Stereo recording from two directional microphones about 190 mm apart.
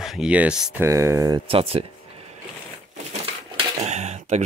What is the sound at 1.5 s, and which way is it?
Speech, 30° right (ahead or behind).